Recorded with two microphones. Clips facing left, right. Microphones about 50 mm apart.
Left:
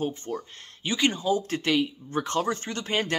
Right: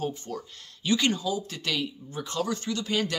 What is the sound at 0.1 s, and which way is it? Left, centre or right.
Speech, left.